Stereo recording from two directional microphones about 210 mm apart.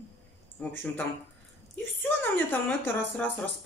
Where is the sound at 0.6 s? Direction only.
5° left (ahead or behind).